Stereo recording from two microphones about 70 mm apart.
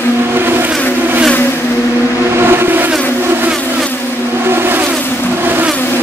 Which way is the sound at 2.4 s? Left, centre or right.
Right.